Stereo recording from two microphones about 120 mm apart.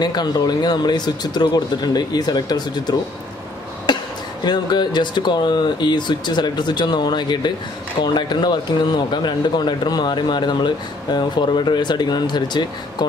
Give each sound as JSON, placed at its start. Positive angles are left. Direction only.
{"t": 0.0, "sound": "speech", "side_deg": 35}
{"t": 3.9, "sound": "a sound", "side_deg": 40}
{"t": 4.5, "sound": "speech", "side_deg": 40}